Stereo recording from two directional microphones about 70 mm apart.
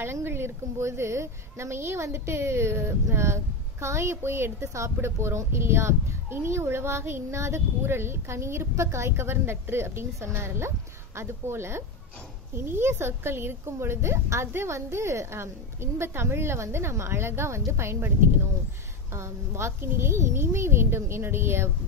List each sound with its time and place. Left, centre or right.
0.0 s speech: right
19.1 s speech: right